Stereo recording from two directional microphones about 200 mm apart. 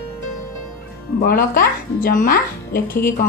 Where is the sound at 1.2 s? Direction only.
50° left (ahead or behind).